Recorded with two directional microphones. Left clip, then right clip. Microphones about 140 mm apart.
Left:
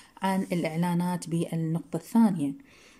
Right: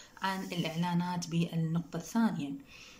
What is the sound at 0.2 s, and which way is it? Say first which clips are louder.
Speech: left 6 dB; 45° left (ahead or behind).